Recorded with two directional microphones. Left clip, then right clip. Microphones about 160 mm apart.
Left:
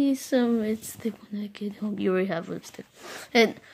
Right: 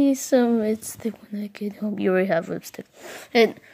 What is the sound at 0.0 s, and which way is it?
Speech, 25° right (ahead or behind).